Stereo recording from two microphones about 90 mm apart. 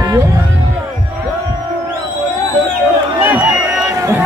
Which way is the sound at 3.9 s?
35° right (ahead or behind).